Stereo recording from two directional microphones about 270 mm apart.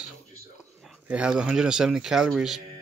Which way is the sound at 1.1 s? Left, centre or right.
Centre.